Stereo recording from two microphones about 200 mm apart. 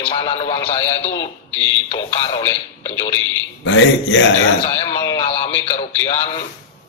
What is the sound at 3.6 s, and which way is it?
Speech, 65° left (ahead or behind).